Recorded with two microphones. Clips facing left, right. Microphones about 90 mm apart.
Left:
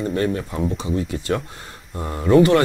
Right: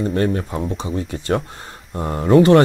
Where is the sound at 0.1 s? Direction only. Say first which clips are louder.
Right 2 dB; 40° right (ahead or behind).